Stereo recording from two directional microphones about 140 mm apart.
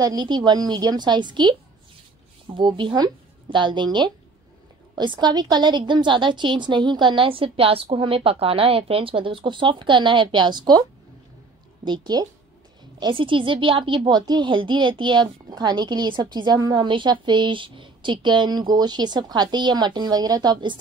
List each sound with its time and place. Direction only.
0.0 s a woman's voice: 30° right (ahead or behind)
11.8 s a woman's voice: 30° right (ahead or behind)